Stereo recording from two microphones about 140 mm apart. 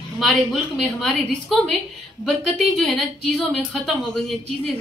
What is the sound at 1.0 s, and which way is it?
A woman's voice, centre (ahead or behind).